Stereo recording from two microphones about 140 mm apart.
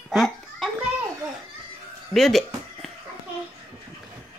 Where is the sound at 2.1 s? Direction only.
Centre (ahead or behind).